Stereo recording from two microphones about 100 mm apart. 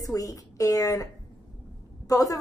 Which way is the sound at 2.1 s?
35° left (ahead or behind).